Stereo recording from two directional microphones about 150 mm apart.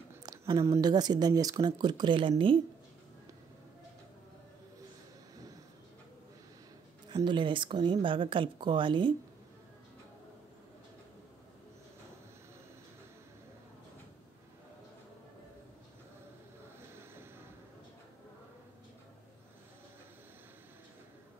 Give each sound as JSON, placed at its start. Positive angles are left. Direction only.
{"t": 0.1, "sound": "speech", "side_deg": -25}
{"t": 7.2, "sound": "speech", "side_deg": -30}